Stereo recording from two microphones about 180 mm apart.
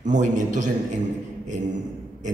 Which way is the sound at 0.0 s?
45° right (ahead or behind).